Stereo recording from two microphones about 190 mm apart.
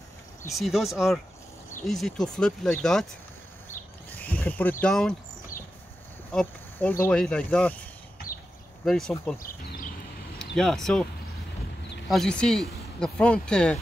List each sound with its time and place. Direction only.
0.5 s speech: centre (ahead or behind)
4.1 s speech: 10° left (ahead or behind)
6.3 s a sound: 10° left (ahead or behind)
7.1 s speech: 5° left (ahead or behind)
8.8 s speech: centre (ahead or behind)
9.4 s a sound: 50° left (ahead or behind)
10.4 s speech: centre (ahead or behind)
12.1 s speech: 5° left (ahead or behind)